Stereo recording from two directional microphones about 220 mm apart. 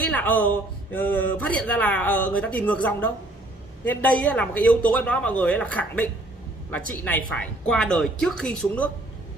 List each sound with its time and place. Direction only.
0.0 s a man's voice: 5° left (ahead or behind)